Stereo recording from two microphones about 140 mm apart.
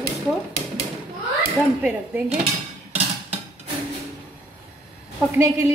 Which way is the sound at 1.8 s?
10° right (ahead or behind).